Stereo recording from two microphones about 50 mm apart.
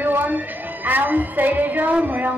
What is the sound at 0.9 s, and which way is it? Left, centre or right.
Music, right.